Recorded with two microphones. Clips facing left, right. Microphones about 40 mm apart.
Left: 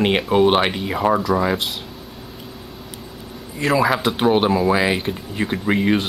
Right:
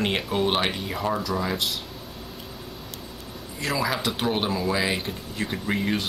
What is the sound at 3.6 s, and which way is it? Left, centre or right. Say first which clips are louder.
Speech: left 8 dB; centre.